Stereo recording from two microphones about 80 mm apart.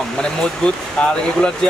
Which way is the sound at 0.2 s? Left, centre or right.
Centre.